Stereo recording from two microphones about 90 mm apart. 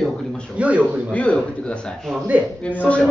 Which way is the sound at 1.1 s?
15° left (ahead or behind).